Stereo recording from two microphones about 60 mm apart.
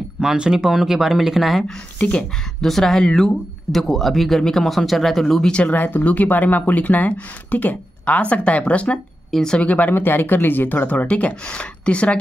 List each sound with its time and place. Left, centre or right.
0.2 s speech: centre
2.0 s speech: left
2.6 s speech: centre
5.5 s speech: centre
5.8 s speech: left
9.3 s speech: centre
9.6 s speech: left